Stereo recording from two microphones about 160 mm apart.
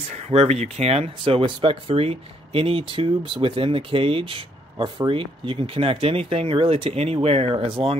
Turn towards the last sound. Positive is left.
turn(degrees=-35)  # may be behind; listen again after turning